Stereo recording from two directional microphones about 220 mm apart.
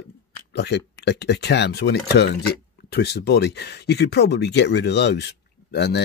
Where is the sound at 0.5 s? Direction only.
50° left (ahead or behind).